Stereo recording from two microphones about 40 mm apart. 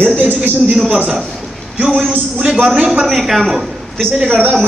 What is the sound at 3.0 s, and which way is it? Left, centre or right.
Speech, centre.